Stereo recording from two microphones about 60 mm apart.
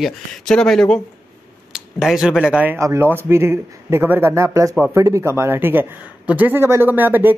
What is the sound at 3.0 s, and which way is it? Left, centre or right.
A man's voice, right.